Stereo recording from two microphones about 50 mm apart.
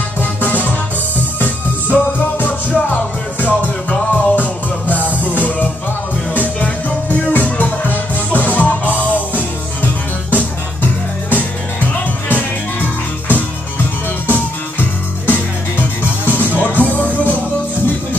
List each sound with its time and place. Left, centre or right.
0.2 s music: left
10.3 s music: left
14.2 s music: left